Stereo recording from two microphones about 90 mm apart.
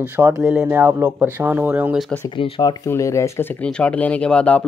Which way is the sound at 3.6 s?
10° left (ahead or behind).